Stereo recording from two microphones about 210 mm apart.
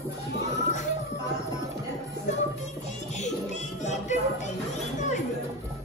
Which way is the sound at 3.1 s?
35° left (ahead or behind).